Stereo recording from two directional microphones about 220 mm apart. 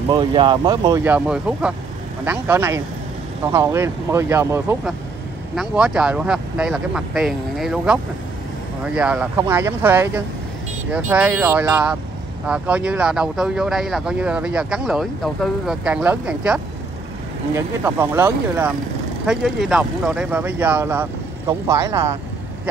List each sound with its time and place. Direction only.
0.1 s speech: 20° right (ahead or behind)